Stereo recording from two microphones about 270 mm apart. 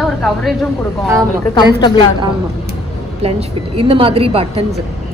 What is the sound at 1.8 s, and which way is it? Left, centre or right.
Speech, centre.